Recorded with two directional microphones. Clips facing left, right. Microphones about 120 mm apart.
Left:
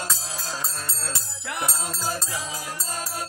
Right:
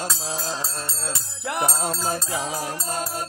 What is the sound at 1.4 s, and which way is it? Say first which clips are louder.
Music: right 6 dB; 40° right (ahead or behind).